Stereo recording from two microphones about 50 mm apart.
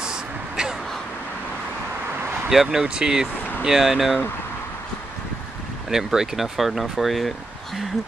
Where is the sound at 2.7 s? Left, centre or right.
Centre.